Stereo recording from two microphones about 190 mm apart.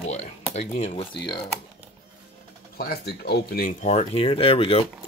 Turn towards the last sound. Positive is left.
turn(degrees=30)  # may be behind; listen again after turning